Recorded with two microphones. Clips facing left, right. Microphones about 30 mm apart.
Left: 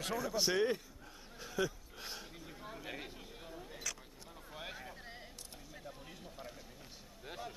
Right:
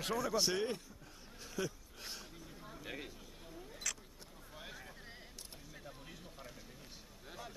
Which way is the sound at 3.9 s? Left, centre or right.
Centre.